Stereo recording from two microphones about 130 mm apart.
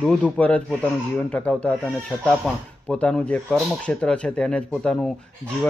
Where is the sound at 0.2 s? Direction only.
10° left (ahead or behind).